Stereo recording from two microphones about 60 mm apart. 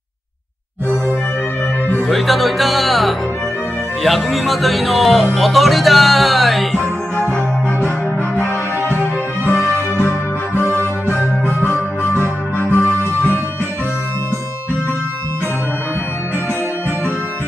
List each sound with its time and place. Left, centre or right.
2.0 s speech: centre
6.8 s music: left
8.4 s music: right
11.7 s music: left